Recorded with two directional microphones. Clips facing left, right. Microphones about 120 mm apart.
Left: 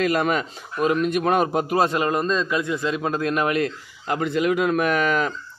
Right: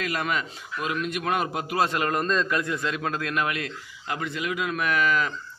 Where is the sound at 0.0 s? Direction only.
40° left (ahead or behind).